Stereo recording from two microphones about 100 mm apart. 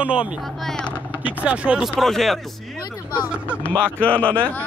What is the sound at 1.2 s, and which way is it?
Speech, 15° right (ahead or behind).